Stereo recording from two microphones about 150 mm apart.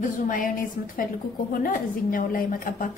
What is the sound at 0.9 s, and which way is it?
A woman's voice, 70° left (ahead or behind).